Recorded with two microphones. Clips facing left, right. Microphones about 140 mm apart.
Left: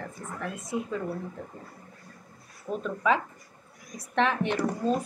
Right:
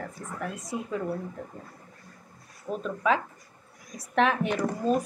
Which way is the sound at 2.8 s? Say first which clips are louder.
Even; centre (ahead or behind).